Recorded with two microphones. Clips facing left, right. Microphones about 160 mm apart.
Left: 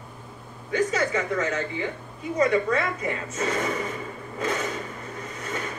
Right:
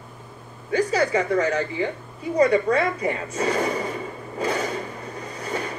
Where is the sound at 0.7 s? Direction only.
35° right (ahead or behind).